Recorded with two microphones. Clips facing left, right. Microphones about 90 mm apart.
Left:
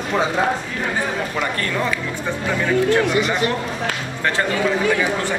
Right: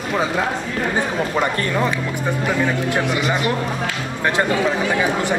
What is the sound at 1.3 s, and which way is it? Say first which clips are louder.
Speech: right 3 dB; 25° right (ahead or behind).